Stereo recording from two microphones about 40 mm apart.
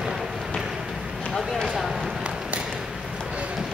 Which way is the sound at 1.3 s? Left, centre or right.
Centre.